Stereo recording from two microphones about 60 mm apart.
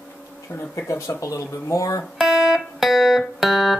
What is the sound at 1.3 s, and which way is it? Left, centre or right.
Speech, left.